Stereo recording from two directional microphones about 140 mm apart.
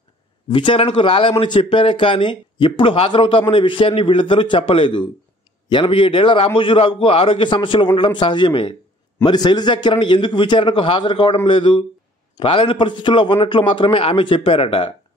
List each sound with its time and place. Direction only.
0.5 s speech: 35° left (ahead or behind)